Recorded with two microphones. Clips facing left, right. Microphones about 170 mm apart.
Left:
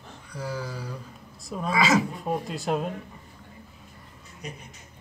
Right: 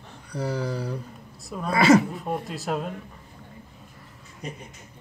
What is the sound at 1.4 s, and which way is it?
Speech, centre (ahead or behind).